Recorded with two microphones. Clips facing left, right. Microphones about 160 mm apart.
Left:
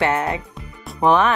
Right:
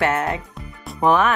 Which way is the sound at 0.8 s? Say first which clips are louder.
Left 1 dB; centre (ahead or behind).